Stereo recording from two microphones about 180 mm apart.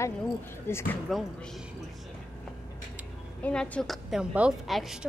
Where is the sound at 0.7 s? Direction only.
15° left (ahead or behind).